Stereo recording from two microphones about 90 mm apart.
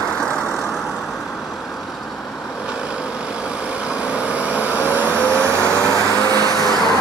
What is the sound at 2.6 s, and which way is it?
Vehicle, 15° right (ahead or behind).